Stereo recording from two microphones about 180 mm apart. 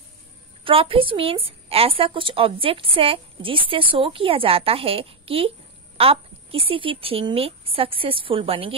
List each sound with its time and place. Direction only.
0.7 s a woman's voice: 30° right (ahead or behind)